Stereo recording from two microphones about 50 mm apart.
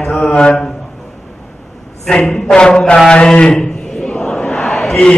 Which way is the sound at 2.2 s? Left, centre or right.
Centre.